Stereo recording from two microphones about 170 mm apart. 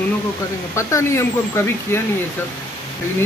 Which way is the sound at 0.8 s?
15° left (ahead or behind).